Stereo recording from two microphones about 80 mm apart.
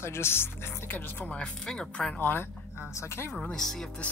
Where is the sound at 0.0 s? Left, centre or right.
Left.